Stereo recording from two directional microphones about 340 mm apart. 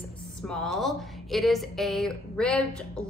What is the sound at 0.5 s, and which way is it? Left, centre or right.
A woman's voice, centre.